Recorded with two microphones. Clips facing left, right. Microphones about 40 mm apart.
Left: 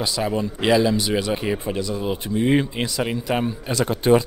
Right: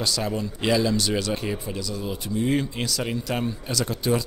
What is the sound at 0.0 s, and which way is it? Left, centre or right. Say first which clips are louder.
Speech: left 3 dB; centre.